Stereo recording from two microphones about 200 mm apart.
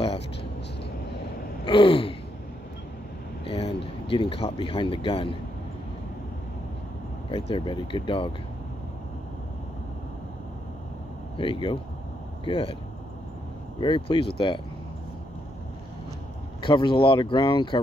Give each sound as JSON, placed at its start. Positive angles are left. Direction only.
{"t": 0.0, "sound": "a sound", "side_deg": 30}
{"t": 1.6, "sound": "gasp", "side_deg": 25}
{"t": 3.4, "sound": "speech", "side_deg": 30}
{"t": 7.2, "sound": "speech", "side_deg": 30}
{"t": 11.3, "sound": "speech", "side_deg": 25}
{"t": 13.7, "sound": "speech", "side_deg": 25}
{"t": 16.6, "sound": "speech", "side_deg": 25}